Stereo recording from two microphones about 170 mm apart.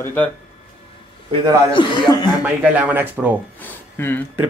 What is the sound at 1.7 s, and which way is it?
Speech, 30° left (ahead or behind).